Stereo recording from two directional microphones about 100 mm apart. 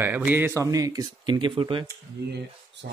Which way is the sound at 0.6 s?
35° right (ahead or behind).